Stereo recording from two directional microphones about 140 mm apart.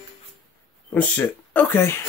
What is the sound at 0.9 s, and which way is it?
Speech, 10° left (ahead or behind).